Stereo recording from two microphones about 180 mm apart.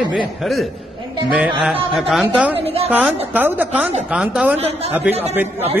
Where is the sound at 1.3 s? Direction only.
5° right (ahead or behind).